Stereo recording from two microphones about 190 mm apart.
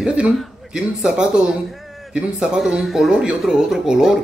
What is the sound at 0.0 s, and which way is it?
A man's voice, 5° right (ahead or behind).